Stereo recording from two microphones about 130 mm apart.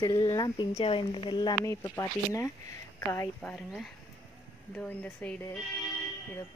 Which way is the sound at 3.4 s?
10° left (ahead or behind).